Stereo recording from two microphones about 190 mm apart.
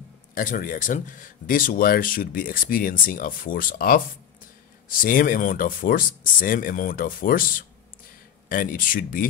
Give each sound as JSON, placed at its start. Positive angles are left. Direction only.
{"t": 0.3, "sound": "speech", "side_deg": 45}